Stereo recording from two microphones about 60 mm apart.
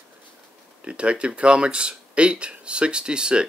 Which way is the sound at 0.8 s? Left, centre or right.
Centre.